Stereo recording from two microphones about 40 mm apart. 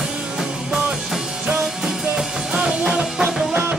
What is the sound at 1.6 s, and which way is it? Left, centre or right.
Music, centre.